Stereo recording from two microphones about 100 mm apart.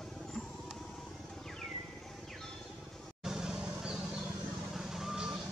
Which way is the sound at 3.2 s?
5° right (ahead or behind).